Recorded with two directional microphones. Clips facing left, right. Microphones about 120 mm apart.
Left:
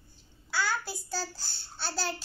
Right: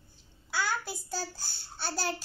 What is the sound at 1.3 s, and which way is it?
Babbling, 50° right (ahead or behind).